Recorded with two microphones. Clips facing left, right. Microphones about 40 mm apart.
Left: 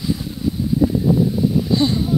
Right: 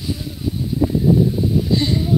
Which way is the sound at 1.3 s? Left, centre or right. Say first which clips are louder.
Left 1 dB; centre.